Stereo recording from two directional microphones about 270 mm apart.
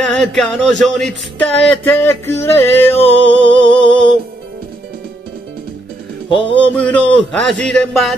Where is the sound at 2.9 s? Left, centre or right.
Left.